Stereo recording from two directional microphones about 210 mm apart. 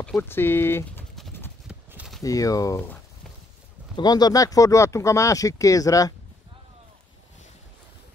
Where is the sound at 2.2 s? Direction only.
15° left (ahead or behind).